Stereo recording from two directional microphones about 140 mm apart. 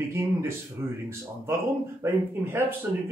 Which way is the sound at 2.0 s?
20° right (ahead or behind).